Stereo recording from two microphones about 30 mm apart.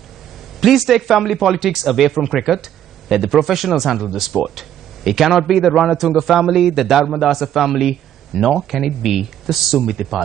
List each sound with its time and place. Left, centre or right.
0.6 s speech: centre